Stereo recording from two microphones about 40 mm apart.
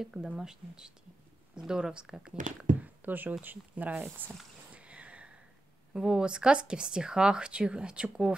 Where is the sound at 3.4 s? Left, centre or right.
Right.